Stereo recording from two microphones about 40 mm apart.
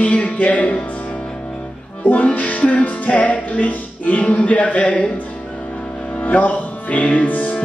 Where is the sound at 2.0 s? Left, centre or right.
Left.